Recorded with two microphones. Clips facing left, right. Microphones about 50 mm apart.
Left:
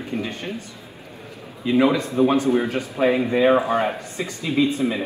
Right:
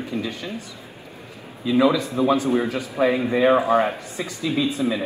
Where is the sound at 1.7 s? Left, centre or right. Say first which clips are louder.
Even; left.